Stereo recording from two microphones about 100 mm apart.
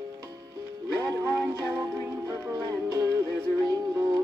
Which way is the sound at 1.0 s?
35° right (ahead or behind).